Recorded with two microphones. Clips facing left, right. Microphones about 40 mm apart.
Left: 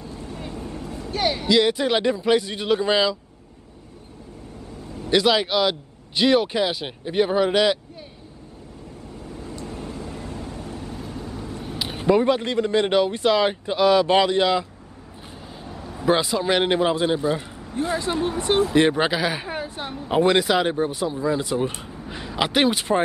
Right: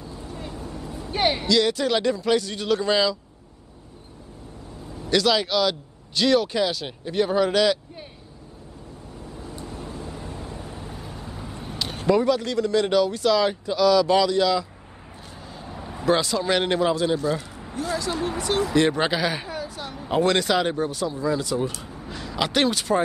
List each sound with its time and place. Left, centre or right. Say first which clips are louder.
0.5 s vehicle: left 2 dB; left
1.1 s a sound: right 1 dB; right
1.5 s a man's voice: left 4 dB; left
5.0 s a man's voice: left 2 dB; left
9.7 s vehicle: left 1 dB; left
10.6 s vehicle: left 3 dB; centre
11.0 s vehicle: left 4 dB; centre
11.8 s vehicle: left 2 dB; centre
12.2 s speech: left 1 dB; left
15.7 s vehicle: even; centre
16.1 s a man's voice: left 1 dB; centre
18.9 s speech: left 1 dB; centre
19.5 s a sound: left 2 dB; left
20.0 s a man's voice: left 2 dB; centre